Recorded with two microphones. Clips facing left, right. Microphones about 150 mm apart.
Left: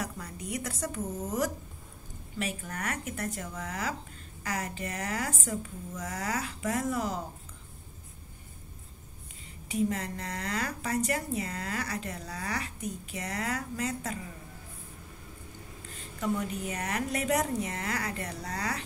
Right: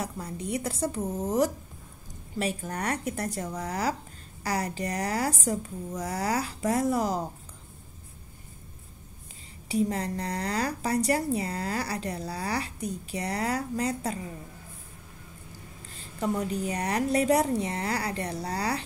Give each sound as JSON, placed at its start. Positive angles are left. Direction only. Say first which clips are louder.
{"t": 0.0, "sound": "a woman's voice", "louder": "right 4 dB", "side_deg": -30}
{"t": 9.7, "sound": "a woman's voice", "louder": "right 3 dB", "side_deg": -35}
{"t": 15.9, "sound": "a woman's voice", "louder": "right 2 dB", "side_deg": -35}